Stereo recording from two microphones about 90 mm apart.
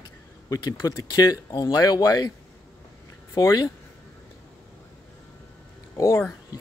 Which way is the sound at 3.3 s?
40° left (ahead or behind).